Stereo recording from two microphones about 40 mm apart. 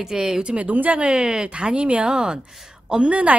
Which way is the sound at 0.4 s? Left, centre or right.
Right.